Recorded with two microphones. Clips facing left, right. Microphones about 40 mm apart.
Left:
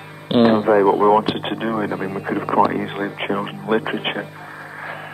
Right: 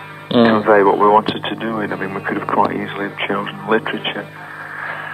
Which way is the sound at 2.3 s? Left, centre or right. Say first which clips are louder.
Even; right.